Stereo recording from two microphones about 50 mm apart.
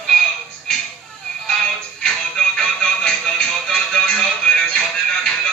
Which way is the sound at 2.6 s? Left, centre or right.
Centre.